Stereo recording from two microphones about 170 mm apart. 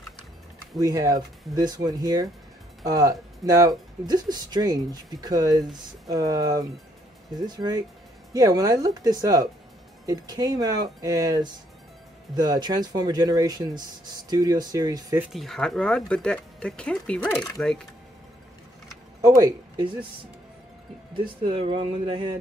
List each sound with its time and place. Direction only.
0.7 s speech: 20° right (ahead or behind)
15.2 s speech: centre (ahead or behind)
19.2 s speech: 20° right (ahead or behind)
21.1 s speech: 30° right (ahead or behind)